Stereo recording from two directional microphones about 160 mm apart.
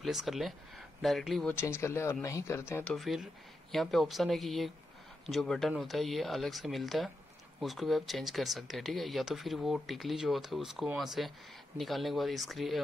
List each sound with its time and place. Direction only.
0.0 s speech: centre (ahead or behind)
1.5 s speech: 15° left (ahead or behind); by 12.8 s centre (ahead or behind)